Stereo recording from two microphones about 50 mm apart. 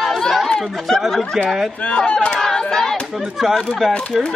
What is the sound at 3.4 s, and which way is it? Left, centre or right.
Speech, centre.